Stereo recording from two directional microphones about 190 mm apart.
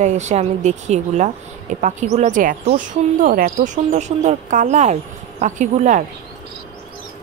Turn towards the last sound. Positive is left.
turn(degrees=-40)  # may be behind; listen again after turning